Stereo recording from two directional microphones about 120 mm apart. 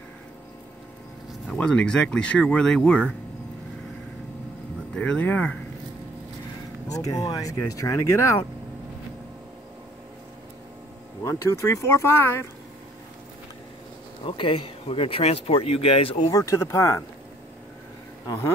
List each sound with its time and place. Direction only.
1.5 s speech: 5° left (ahead or behind)
4.9 s speech: 10° left (ahead or behind)
6.9 s speech: 30° left (ahead or behind)
11.2 s speech: 25° left (ahead or behind)
14.2 s speech: 45° left (ahead or behind)
16.3 s speech: 25° left (ahead or behind)
18.2 s speech: 25° left (ahead or behind)